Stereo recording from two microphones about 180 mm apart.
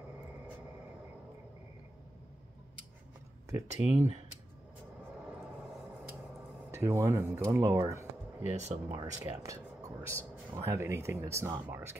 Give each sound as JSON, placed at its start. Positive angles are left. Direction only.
{"t": 3.4, "sound": "speech", "side_deg": -15}
{"t": 6.7, "sound": "speech", "side_deg": -15}
{"t": 7.9, "sound": "a sound", "side_deg": -15}
{"t": 8.9, "sound": "speech", "side_deg": -20}